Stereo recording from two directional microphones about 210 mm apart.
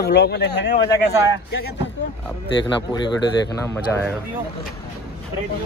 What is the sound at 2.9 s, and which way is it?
Speech, 20° left (ahead or behind).